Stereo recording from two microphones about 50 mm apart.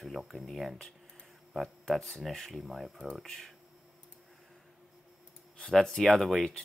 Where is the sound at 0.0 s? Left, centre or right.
Centre.